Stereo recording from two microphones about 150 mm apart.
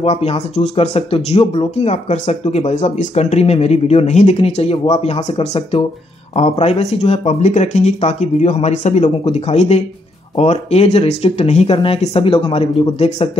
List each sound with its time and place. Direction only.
0.0 s speech: 40° left (ahead or behind)